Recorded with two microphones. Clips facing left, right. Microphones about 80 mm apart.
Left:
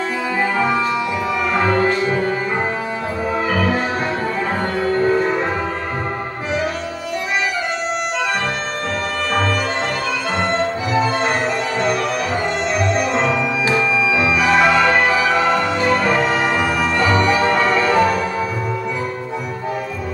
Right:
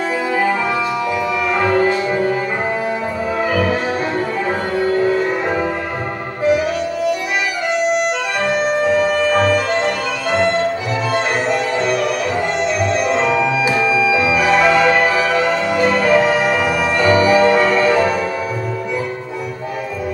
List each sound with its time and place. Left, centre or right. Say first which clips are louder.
1.5 s music: right 2 dB; centre
8.8 s music: right 7 dB; centre
13.1 s music: right 3 dB; centre